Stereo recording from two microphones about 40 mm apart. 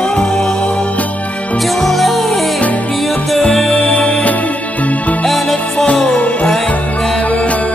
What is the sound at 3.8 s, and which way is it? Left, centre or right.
Music, left.